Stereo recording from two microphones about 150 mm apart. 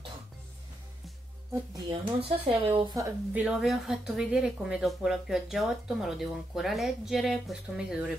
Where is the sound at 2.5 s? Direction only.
35° right (ahead or behind).